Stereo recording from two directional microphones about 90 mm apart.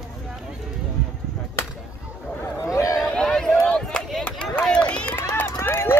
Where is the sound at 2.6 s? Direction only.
35° left (ahead or behind).